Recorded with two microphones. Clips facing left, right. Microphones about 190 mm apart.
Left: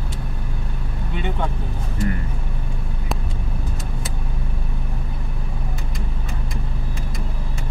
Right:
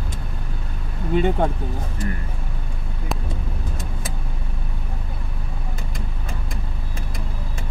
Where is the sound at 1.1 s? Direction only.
40° right (ahead or behind).